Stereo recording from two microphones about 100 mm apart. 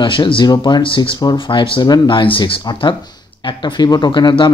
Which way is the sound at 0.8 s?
60° left (ahead or behind).